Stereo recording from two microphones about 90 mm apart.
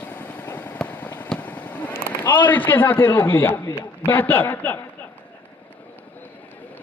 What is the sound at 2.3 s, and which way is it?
A man's voice, 20° left (ahead or behind).